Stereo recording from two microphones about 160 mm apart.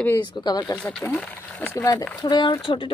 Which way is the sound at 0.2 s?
30° left (ahead or behind).